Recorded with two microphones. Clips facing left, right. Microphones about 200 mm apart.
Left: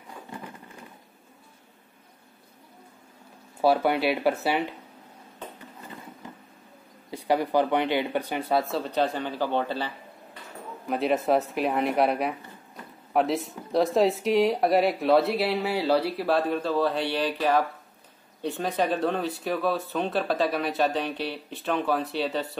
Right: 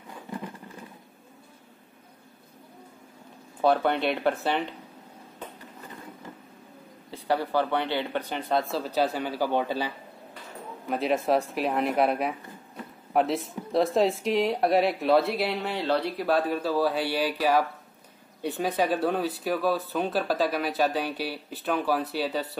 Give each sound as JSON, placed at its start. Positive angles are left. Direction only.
{"t": 3.6, "sound": "speech", "side_deg": 5}
{"t": 7.1, "sound": "speech", "side_deg": 15}
{"t": 10.9, "sound": "speech", "side_deg": 0}